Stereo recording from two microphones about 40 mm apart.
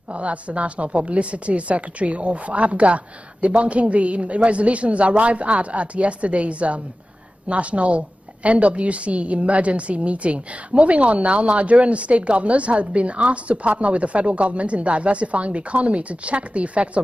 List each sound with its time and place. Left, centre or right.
0.1 s a woman's voice: right